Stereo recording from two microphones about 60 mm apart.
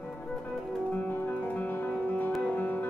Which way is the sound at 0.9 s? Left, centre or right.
Left.